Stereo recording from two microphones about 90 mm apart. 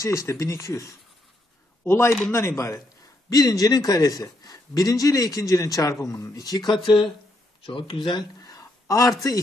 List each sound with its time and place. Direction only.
0.0 s a man's voice: 35° left (ahead or behind); by 7.1 s 60° left (ahead or behind)
7.6 s speech: 80° left; by 9.1 s 40° left (ahead or behind)